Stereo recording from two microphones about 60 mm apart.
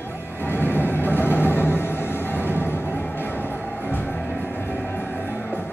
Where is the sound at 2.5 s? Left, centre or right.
Left.